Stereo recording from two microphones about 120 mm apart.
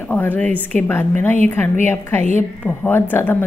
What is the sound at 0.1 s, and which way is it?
A woman's voice, 15° left (ahead or behind).